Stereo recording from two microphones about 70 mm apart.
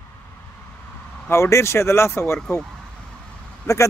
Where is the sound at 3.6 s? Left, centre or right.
Left.